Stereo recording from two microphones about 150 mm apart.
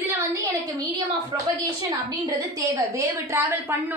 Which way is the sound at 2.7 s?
20° right (ahead or behind).